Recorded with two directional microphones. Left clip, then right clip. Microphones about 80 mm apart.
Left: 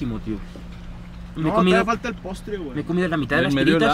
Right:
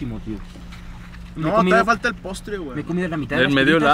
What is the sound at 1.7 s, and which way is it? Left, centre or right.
Speech, centre.